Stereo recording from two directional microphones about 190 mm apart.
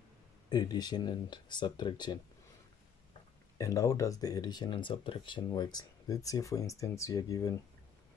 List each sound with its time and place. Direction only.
0.5 s speech: 20° left (ahead or behind)
3.5 s speech: 15° left (ahead or behind)